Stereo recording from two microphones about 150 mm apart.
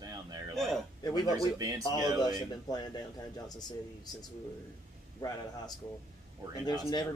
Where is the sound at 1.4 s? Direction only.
25° right (ahead or behind).